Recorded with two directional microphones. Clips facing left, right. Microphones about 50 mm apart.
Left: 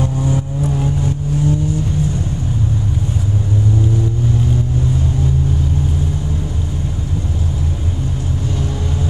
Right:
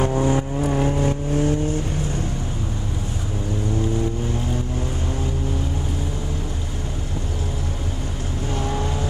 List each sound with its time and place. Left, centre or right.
0.0 s vehicle: right